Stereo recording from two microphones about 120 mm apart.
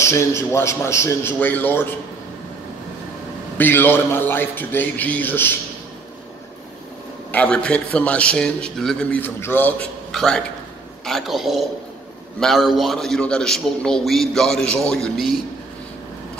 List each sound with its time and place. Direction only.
0.0 s a man's voice: 25° left (ahead or behind)
3.5 s a man's voice: 15° left (ahead or behind)
7.2 s a man's voice: 10° left (ahead or behind)